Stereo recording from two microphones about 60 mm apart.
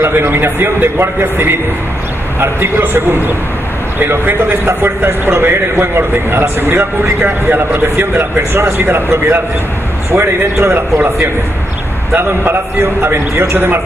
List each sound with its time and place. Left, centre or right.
0.0 s a man's voice: right
13.0 s a man's voice: right